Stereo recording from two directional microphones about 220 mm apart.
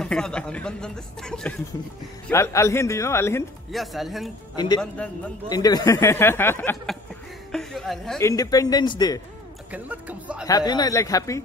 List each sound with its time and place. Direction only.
0.0 s speech: 5° left (ahead or behind)
3.7 s speech: centre (ahead or behind)
4.6 s a man's voice: 20° left (ahead or behind); by 8.2 s centre (ahead or behind)
8.2 s speech: 15° left (ahead or behind)
9.7 s speech: 5° right (ahead or behind)
10.4 s speech: 15° left (ahead or behind)